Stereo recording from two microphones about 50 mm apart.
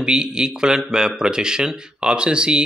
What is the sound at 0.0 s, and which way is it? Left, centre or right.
Speech, centre.